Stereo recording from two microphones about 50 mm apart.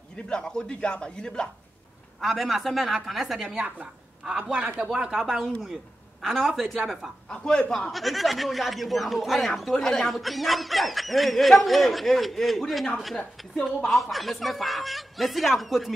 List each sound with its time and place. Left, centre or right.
0.1 s a man's voice: centre
2.1 s speech: centre
3.8 s a man's voice: centre
5.1 s speech: centre
6.2 s speech: centre
6.8 s speech: centre
7.2 s a man's voice: centre
7.9 s speech: centre